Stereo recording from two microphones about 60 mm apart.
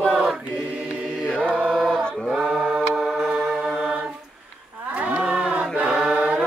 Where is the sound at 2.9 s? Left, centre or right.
Centre.